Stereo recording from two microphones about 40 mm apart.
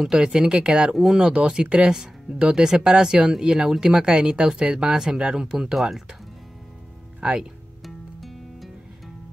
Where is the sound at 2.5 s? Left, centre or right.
Centre.